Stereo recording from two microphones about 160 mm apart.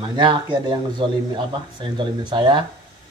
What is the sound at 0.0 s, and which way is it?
A man's voice, 30° right (ahead or behind).